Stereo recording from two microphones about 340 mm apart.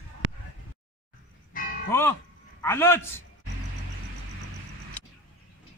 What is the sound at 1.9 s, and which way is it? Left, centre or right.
Music, centre.